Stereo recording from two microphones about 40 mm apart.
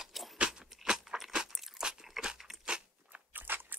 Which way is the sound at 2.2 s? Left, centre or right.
Centre.